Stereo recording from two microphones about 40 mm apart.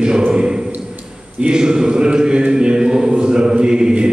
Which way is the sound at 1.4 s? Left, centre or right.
Right.